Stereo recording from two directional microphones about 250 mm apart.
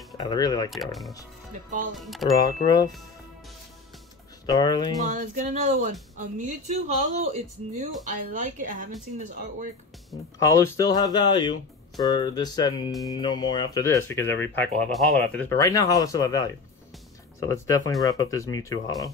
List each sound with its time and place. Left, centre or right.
0.2 s speech: centre
0.7 s speech: centre
2.3 s speech: centre
4.5 s speech: centre
5.0 s speech: right
10.4 s speech: centre